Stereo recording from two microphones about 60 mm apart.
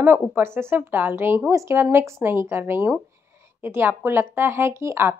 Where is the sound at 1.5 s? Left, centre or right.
Right.